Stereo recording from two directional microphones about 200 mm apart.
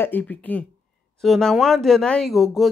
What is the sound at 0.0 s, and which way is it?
A woman's voice, 10° left (ahead or behind).